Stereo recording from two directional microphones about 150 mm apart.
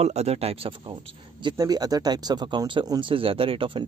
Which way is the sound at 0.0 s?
45° right (ahead or behind).